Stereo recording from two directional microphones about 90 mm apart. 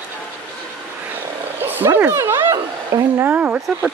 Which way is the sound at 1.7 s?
25° right (ahead or behind).